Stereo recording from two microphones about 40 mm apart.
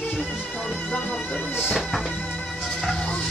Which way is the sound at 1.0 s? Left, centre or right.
Centre.